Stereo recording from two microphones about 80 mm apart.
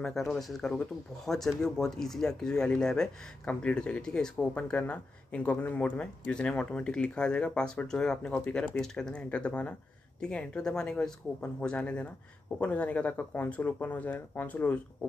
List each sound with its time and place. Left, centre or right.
0.0 s speech: centre